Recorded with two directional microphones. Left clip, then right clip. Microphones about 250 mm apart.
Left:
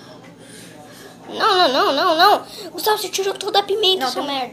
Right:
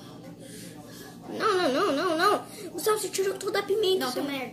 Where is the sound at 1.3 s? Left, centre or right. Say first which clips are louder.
Left 10 dB; centre.